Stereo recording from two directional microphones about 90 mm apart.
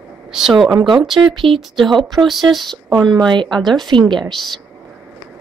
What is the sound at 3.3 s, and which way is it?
Speech, 55° right (ahead or behind).